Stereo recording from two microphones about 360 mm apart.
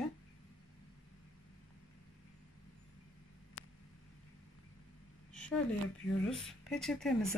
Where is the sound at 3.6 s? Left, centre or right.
Left.